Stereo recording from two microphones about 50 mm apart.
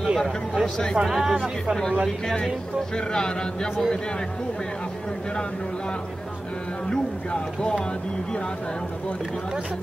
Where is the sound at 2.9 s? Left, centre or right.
Centre.